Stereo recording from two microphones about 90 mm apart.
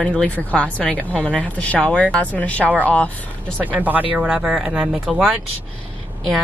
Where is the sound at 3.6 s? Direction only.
20° right (ahead or behind).